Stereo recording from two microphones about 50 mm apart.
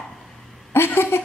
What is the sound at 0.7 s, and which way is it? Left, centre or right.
Speech, left.